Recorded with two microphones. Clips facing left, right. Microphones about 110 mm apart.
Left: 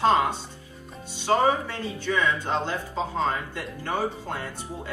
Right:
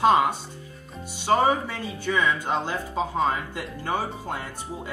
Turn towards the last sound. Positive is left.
turn(degrees=-15)  # may be behind; listen again after turning